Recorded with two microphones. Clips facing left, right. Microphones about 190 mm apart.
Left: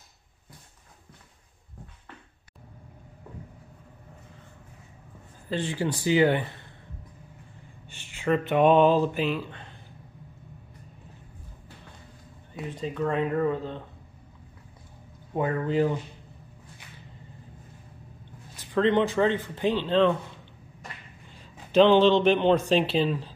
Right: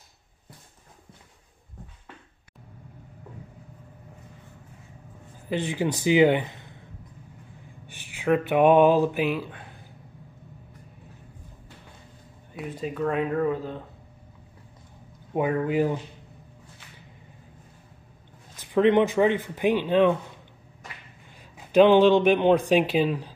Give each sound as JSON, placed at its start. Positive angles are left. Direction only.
{"t": 5.5, "sound": "speech", "side_deg": -15}
{"t": 7.9, "sound": "a sound", "side_deg": -10}
{"t": 12.5, "sound": "speech", "side_deg": -5}
{"t": 15.3, "sound": "speech", "side_deg": -15}
{"t": 18.6, "sound": "speech", "side_deg": -15}
{"t": 21.7, "sound": "speech", "side_deg": -10}